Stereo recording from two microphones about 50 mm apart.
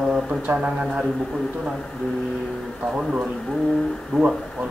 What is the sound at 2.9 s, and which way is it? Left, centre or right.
Speech, right.